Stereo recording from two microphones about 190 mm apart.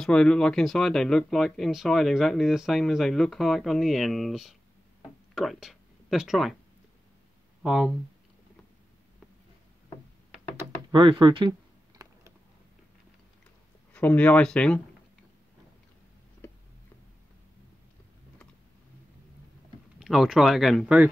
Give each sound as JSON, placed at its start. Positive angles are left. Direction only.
{"t": 0.0, "sound": "speech", "side_deg": 5}
{"t": 7.6, "sound": "speech", "side_deg": -5}
{"t": 10.9, "sound": "speech", "side_deg": -25}
{"t": 12.0, "sound": "a sound", "side_deg": -20}
{"t": 13.9, "sound": "speech", "side_deg": 5}
{"t": 20.0, "sound": "speech", "side_deg": 0}